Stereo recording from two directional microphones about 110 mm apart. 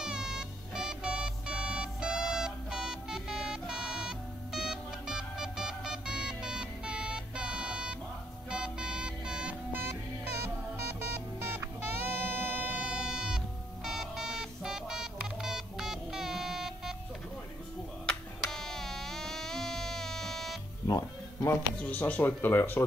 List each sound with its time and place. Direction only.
0.0 s music: 5° right (ahead or behind)
11.5 s music: 20° right (ahead or behind); by 16.9 s 5° right (ahead or behind)
18.4 s music: 5° left (ahead or behind)
20.8 s music: 35° left (ahead or behind)
21.8 s speech: 15° left (ahead or behind)